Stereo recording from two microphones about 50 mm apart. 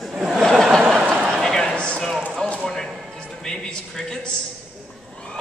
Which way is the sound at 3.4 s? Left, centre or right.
Centre.